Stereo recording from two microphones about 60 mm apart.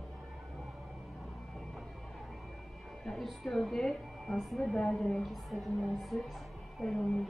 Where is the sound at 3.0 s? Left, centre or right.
Centre.